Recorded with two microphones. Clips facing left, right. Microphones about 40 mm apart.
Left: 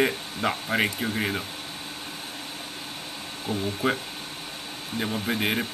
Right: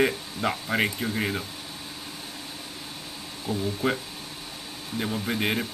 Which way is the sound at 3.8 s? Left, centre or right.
Left.